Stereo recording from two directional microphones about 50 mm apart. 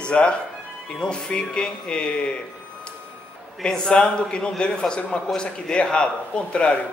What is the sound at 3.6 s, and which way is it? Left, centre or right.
A man's voice, centre.